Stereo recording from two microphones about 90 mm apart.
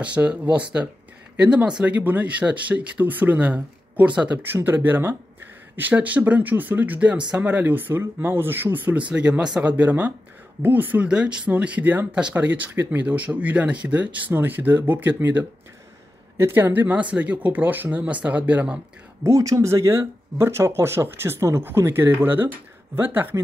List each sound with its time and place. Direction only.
0.0 s speech: 15° right (ahead or behind)
19.2 s speech: 35° right (ahead or behind)